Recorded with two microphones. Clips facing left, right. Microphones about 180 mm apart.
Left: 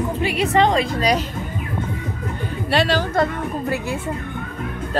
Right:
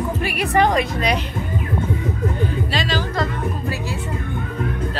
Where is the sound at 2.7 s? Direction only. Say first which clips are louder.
Left 4 dB; 60° left (ahead or behind).